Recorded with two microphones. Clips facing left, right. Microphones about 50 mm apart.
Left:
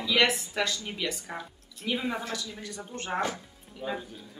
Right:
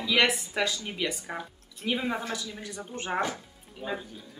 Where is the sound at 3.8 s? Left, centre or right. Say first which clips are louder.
Even; centre.